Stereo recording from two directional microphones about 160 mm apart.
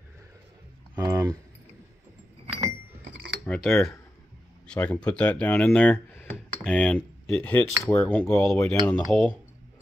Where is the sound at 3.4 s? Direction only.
5° left (ahead or behind).